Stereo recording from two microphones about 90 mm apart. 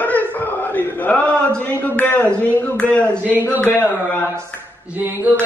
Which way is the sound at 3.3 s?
20° right (ahead or behind).